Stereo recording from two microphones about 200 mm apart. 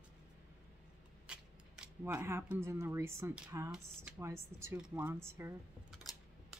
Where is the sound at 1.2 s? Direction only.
5° right (ahead or behind).